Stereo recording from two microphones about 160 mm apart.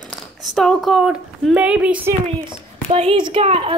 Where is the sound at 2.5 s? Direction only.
40° right (ahead or behind).